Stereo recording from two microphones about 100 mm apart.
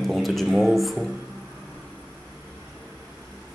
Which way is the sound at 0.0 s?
Centre (ahead or behind).